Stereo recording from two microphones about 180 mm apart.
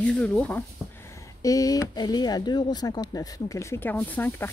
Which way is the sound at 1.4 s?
20° left (ahead or behind).